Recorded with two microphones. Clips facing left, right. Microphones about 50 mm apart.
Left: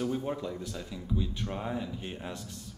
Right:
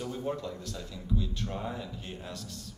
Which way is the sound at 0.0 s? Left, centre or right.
Centre.